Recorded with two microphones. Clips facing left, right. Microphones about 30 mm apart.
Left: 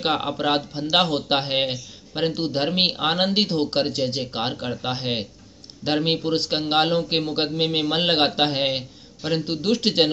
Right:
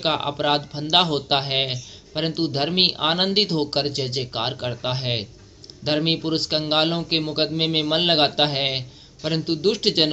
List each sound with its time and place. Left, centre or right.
0.0 s a man's voice: centre